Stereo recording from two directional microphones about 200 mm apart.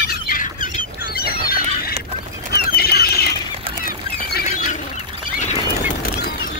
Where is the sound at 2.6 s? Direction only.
50° left (ahead or behind).